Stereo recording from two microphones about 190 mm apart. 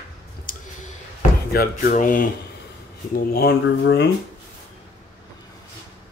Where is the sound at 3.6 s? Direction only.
65° left (ahead or behind).